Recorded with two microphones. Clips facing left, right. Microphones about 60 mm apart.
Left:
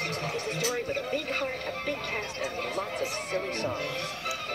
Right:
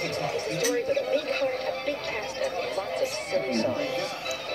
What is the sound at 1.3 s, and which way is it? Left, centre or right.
Speech, left.